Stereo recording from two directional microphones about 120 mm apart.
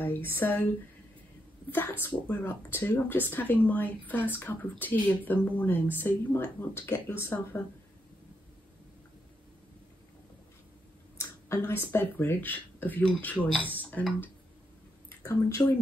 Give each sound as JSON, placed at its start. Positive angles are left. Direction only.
{"t": 0.0, "sound": "speech", "side_deg": 15}
{"t": 1.7, "sound": "speech", "side_deg": 15}
{"t": 11.1, "sound": "speech", "side_deg": 25}
{"t": 15.0, "sound": "speech", "side_deg": 25}